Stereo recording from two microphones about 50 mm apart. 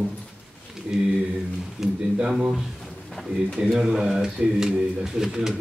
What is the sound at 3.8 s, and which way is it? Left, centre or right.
A man's voice, centre.